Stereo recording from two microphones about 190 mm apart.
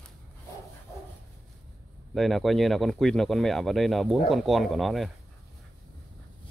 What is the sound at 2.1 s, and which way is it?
Speech, centre (ahead or behind).